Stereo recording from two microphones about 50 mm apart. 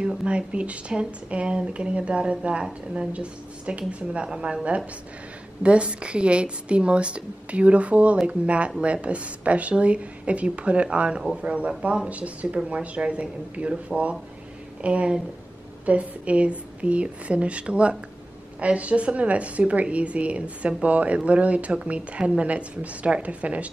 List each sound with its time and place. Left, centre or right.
0.2 s speech: right
5.6 s speech: right